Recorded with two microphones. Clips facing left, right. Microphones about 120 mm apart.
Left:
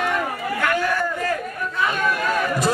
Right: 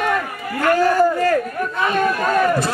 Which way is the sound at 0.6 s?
40° right (ahead or behind).